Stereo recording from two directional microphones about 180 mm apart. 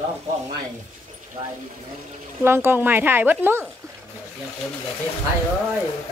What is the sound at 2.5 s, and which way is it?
Speech, 15° right (ahead or behind).